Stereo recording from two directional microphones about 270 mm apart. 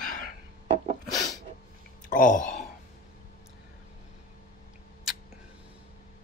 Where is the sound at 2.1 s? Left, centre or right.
Left.